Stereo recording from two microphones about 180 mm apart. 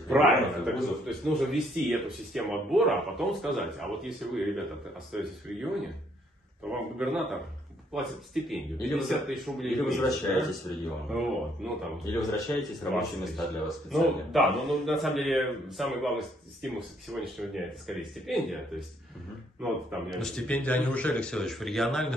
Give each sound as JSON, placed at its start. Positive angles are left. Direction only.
{"t": 0.1, "sound": "speech", "side_deg": 0}
{"t": 6.7, "sound": "speech", "side_deg": 0}
{"t": 19.6, "sound": "speech", "side_deg": 0}